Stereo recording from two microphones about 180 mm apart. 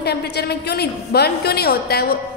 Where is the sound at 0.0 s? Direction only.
65° left (ahead or behind).